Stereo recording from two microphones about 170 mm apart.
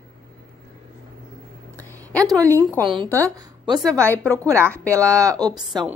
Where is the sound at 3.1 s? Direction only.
20° right (ahead or behind).